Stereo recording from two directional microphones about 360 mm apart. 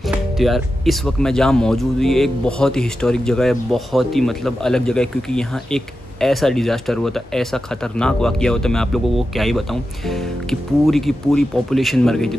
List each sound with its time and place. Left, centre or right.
0.1 s speech: centre